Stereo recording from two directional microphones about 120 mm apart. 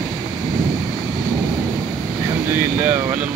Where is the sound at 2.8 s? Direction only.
15° right (ahead or behind).